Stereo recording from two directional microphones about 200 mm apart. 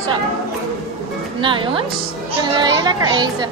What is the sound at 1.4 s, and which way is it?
A child's voice, 25° right (ahead or behind).